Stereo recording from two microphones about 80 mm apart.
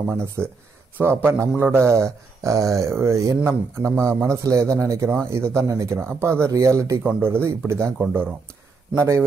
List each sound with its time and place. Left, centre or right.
0.1 s speech: right
7.0 s speech: right